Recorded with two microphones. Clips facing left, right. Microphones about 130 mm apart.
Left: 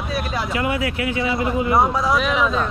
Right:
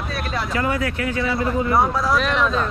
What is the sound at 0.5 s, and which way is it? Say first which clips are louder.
Speech: even; 40° right (ahead or behind).